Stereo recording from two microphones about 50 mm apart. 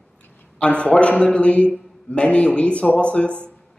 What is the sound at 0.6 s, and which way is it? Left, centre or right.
A man's voice, left.